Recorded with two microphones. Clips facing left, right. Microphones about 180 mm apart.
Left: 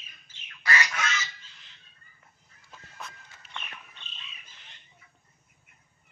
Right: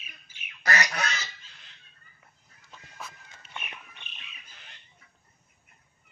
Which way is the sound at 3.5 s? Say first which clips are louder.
Right 1 dB; 15° right (ahead or behind).